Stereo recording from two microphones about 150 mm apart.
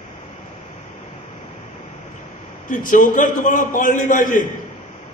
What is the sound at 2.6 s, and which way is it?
A man's voice, 65° left (ahead or behind).